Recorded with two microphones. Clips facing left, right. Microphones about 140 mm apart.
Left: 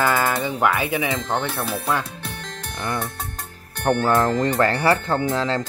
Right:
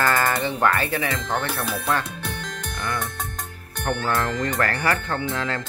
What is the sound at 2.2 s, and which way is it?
Music, 25° left (ahead or behind).